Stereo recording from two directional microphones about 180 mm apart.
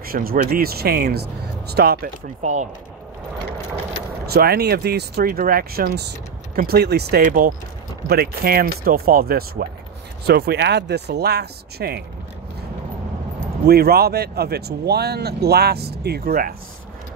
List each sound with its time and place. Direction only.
0.0 s speech: 55° right (ahead or behind)
2.4 s speech: 40° right (ahead or behind)
4.3 s speech: 60° right (ahead or behind)
13.7 s speech: 60° right (ahead or behind)